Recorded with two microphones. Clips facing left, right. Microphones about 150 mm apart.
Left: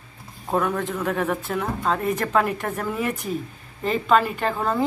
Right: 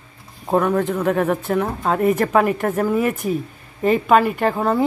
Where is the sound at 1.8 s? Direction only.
55° right (ahead or behind).